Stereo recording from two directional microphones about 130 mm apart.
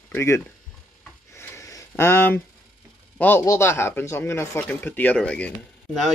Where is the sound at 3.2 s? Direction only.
20° left (ahead or behind).